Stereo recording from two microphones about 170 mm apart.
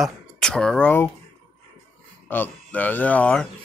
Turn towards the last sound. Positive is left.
turn(degrees=10)  # may be behind; listen again after turning